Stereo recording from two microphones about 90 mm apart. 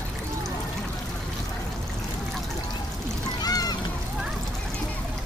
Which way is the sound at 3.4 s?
45° left (ahead or behind).